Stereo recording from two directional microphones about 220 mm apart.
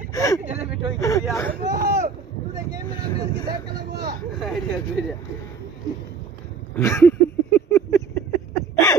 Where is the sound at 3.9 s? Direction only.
45° right (ahead or behind).